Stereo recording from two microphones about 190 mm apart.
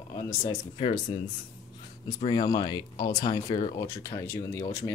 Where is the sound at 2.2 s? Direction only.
20° left (ahead or behind).